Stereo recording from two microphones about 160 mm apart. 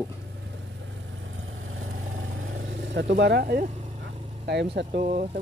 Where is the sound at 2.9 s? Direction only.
90° right; by 3.7 s 70° right (ahead or behind).